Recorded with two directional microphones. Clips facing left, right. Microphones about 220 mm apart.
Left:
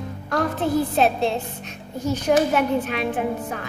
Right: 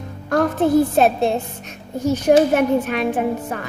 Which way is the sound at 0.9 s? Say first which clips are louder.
Right 4 dB; 50° right (ahead or behind).